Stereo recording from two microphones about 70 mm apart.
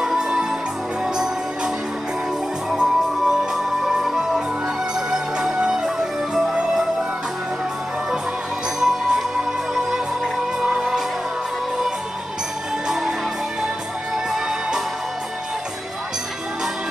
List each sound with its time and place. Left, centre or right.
0.0 s music: centre
2.7 s music: centre
8.7 s music: centre
12.8 s music: centre